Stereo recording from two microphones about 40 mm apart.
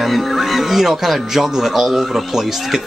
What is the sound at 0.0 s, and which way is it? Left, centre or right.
Speech, centre.